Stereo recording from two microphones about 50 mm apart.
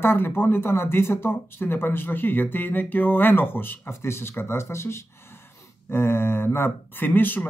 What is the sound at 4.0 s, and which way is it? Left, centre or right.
Speech, left.